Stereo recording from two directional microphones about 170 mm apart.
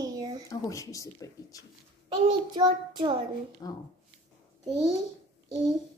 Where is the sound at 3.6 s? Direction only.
20° left (ahead or behind).